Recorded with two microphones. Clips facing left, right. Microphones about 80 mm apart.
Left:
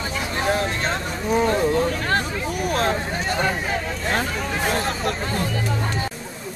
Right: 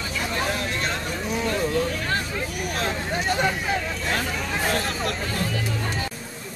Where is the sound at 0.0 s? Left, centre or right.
Left.